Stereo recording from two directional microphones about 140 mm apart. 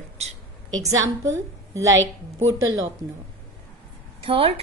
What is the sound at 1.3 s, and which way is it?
A woman's voice, 20° right (ahead or behind).